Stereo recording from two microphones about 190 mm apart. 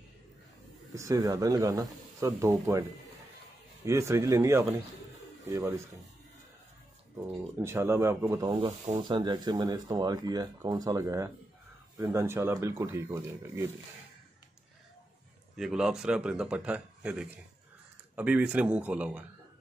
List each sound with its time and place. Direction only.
0.9 s speech: 15° right (ahead or behind)
3.8 s speech: 15° right (ahead or behind)
7.6 s speech: 15° right (ahead or behind)
15.5 s speech: 5° right (ahead or behind)